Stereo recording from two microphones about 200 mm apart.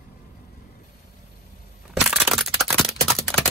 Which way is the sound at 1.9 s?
Centre (ahead or behind).